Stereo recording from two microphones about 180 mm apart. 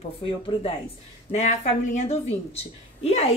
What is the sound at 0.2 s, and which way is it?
Speech, 30° left (ahead or behind).